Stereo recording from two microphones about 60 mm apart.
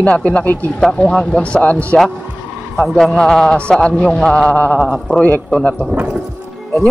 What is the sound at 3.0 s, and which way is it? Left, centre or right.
Speech, centre.